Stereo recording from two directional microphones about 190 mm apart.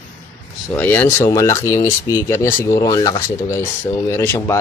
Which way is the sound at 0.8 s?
10° left (ahead or behind).